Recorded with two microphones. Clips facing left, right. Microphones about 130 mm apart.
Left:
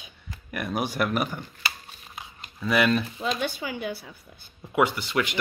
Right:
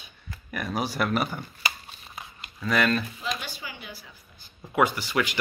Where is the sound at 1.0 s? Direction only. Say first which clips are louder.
Even; 5° left (ahead or behind).